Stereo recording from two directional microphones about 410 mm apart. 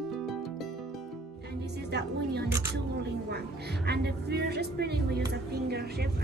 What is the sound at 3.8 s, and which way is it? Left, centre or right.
Speech, right.